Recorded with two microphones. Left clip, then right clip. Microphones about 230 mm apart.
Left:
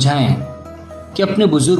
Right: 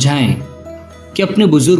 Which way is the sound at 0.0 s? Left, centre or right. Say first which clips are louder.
Right 1 dB; right.